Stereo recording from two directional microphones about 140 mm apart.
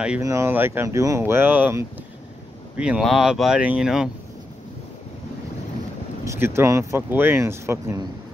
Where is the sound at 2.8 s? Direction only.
5° right (ahead or behind).